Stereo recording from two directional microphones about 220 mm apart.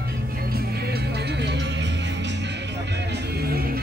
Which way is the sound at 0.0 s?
45° right (ahead or behind).